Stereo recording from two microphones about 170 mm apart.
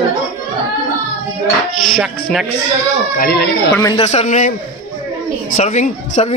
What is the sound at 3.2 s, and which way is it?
Speech, 70° left (ahead or behind).